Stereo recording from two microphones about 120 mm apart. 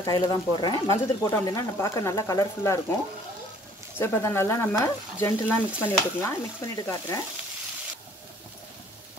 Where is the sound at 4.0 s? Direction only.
20° left (ahead or behind).